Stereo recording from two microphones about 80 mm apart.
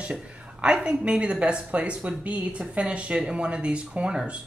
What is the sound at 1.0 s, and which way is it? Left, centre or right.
Speech, centre.